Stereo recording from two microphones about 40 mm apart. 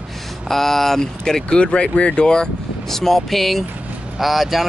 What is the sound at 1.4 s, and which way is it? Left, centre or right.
Speech, left.